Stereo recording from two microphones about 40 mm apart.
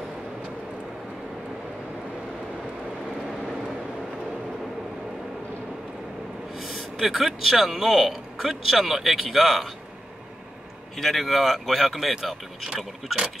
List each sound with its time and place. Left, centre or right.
6.5 s a man's voice: centre
11.0 s a man's voice: centre
12.6 s speech: centre